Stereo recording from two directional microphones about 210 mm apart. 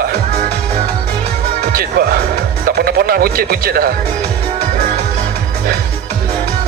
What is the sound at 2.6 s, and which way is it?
Speech, 45° right (ahead or behind).